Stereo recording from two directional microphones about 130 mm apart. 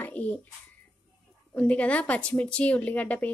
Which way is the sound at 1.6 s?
10° left (ahead or behind).